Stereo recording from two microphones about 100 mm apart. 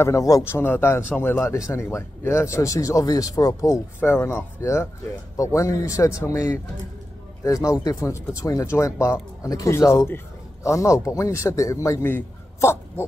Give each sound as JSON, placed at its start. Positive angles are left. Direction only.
{"t": 0.0, "sound": "a man's voice", "side_deg": 30}
{"t": 4.0, "sound": "a man's voice", "side_deg": 20}
{"t": 12.5, "sound": "a sound", "side_deg": 25}